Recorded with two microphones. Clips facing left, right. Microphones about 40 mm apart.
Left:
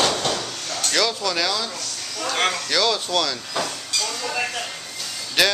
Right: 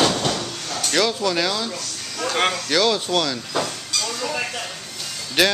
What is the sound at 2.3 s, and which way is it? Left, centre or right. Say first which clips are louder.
Speech: right 1 dB; centre.